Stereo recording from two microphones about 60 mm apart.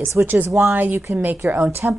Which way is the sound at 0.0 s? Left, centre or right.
Right.